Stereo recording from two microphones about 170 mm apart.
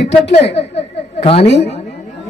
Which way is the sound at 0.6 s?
35° left (ahead or behind).